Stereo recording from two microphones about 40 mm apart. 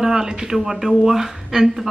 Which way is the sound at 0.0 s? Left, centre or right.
Centre.